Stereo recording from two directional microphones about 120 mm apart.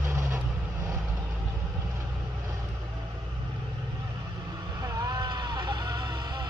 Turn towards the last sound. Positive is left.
turn(degrees=-35)  # may be behind; listen again after turning